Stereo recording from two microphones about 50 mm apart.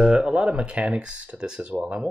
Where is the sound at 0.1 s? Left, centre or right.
Centre.